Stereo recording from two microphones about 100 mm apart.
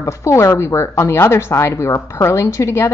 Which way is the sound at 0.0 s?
30° left (ahead or behind).